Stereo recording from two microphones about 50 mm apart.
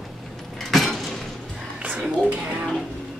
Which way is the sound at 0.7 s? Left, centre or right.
Centre.